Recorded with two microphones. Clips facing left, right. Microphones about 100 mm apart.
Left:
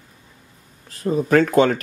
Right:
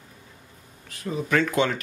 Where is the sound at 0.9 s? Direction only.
40° left (ahead or behind).